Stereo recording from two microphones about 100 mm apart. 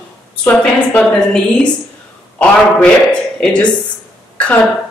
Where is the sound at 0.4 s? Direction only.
15° left (ahead or behind).